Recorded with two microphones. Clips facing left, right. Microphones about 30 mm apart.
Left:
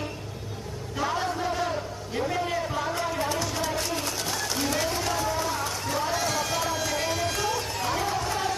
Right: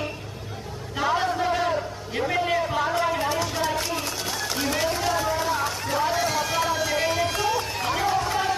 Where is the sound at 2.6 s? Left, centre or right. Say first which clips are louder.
Right 5 dB; right; by 6.6 s centre.